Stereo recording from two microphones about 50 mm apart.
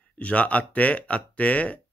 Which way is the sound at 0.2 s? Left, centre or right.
Left.